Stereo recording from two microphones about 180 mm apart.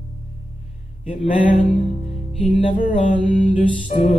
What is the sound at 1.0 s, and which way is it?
Music, 45° left (ahead or behind).